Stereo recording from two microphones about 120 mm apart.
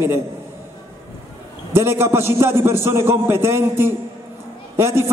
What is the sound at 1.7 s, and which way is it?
A man's voice, 20° right (ahead or behind).